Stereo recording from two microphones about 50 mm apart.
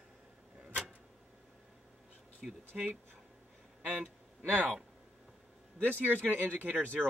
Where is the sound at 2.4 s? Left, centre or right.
Centre.